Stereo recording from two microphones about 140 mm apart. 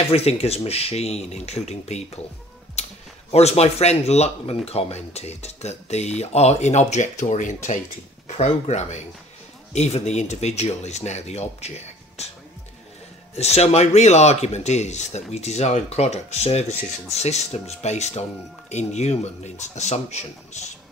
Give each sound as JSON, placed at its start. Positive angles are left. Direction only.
{"t": 0.1, "sound": "speech", "side_deg": 45}
{"t": 8.3, "sound": "speech", "side_deg": 55}
{"t": 13.4, "sound": "speech", "side_deg": 50}